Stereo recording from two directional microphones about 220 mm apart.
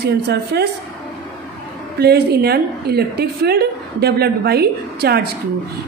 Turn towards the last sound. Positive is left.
turn(degrees=-45)  # may be behind; listen again after turning